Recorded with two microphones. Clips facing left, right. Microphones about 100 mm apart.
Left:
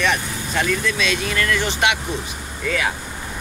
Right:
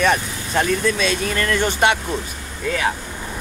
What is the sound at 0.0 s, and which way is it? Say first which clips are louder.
Speech: right 3 dB; 40° right (ahead or behind).